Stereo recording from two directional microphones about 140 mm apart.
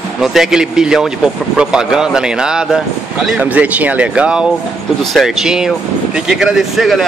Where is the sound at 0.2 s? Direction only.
Centre (ahead or behind).